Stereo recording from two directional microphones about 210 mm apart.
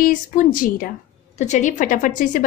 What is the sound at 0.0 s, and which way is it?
A woman's voice, 40° left (ahead or behind).